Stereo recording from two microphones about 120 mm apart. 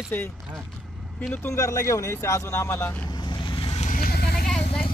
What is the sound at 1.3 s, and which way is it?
Speech, 20° left (ahead or behind).